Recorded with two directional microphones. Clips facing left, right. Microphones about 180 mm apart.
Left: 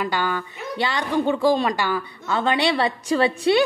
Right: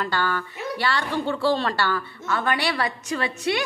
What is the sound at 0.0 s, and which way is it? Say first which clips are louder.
Speech: left 2 dB; 15° left (ahead or behind).